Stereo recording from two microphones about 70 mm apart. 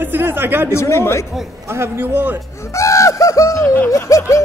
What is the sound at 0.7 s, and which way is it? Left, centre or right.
Speech, left.